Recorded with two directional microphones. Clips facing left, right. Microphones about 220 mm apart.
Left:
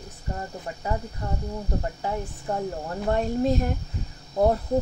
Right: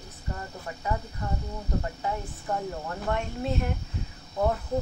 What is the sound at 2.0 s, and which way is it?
Speech, 30° left (ahead or behind).